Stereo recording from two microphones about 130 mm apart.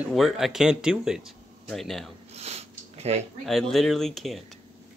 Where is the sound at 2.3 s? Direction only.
55° right (ahead or behind).